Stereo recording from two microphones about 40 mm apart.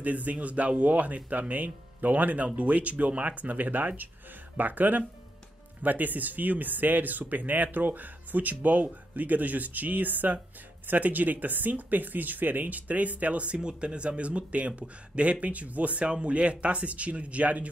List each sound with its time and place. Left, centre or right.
0.0 s speech: right